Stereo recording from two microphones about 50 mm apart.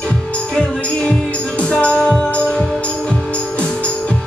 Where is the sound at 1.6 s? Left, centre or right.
Left.